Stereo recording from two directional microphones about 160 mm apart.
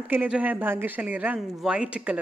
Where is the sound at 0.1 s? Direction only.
10° right (ahead or behind).